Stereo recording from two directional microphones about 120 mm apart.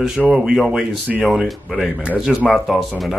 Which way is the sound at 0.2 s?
15° right (ahead or behind).